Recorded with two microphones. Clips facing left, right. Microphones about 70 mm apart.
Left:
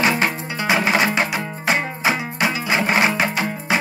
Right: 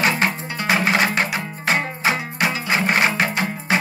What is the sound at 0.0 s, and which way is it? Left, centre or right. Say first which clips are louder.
Music: left 1 dB; centre.